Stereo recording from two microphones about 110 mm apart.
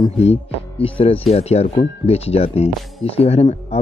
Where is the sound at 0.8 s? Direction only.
60° left (ahead or behind).